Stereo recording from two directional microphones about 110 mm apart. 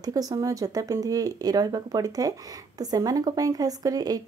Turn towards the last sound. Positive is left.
turn(degrees=-35)  # may be behind; listen again after turning